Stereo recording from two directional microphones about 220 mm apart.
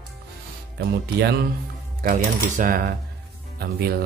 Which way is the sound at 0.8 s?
50° right (ahead or behind).